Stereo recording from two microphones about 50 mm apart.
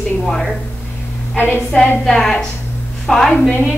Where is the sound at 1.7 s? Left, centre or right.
Left.